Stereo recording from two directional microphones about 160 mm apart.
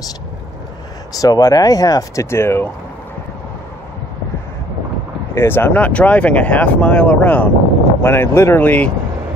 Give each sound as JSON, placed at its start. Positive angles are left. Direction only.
{"t": 1.1, "sound": "speech", "side_deg": 25}
{"t": 5.3, "sound": "speech", "side_deg": 15}